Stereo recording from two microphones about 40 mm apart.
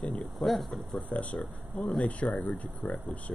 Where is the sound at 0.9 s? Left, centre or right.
Left.